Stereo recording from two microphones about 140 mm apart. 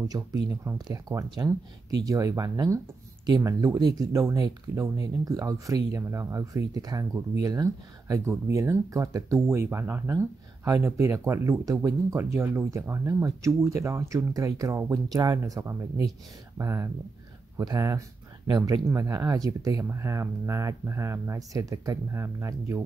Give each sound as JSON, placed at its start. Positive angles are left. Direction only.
{"t": 0.1, "sound": "speech", "side_deg": -25}